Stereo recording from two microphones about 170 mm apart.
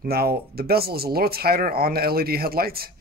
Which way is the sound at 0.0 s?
65° right (ahead or behind).